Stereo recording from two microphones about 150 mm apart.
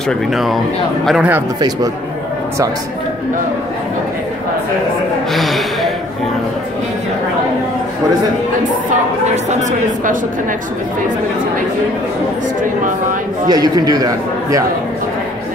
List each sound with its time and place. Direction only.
0.3 s speech: centre (ahead or behind)
5.3 s speech: centre (ahead or behind)
8.9 s speech: 55° right (ahead or behind)
13.5 s a man's voice: 25° right (ahead or behind)